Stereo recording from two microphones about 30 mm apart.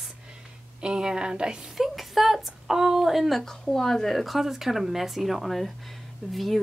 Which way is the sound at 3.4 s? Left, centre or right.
Centre.